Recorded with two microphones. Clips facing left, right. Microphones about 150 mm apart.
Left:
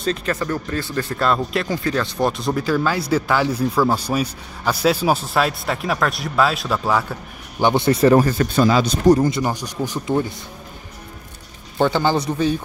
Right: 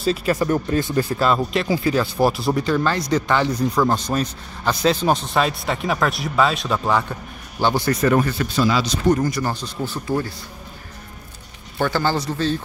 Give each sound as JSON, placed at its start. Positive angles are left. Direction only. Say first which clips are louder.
{"t": 0.0, "sound": "speech", "louder": "right 3 dB", "side_deg": -5}
{"t": 7.6, "sound": "speech", "louder": "left 4 dB", "side_deg": 25}
{"t": 9.2, "sound": "speech", "louder": "left 3 dB", "side_deg": 20}
{"t": 11.8, "sound": "speech", "louder": "left 3 dB", "side_deg": 15}